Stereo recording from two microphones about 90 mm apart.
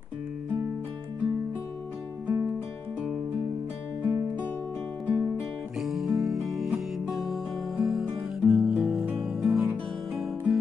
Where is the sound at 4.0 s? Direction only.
25° right (ahead or behind).